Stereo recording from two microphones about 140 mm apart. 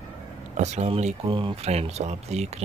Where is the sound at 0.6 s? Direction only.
50° right (ahead or behind).